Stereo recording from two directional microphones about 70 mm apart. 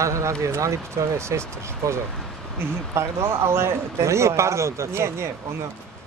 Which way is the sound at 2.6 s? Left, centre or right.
Right.